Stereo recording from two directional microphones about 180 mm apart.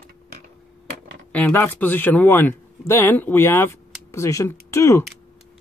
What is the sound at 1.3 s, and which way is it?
Speech, 10° left (ahead or behind).